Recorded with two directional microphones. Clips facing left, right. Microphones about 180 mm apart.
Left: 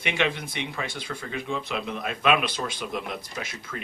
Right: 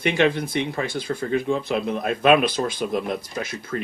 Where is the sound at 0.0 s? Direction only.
40° right (ahead or behind).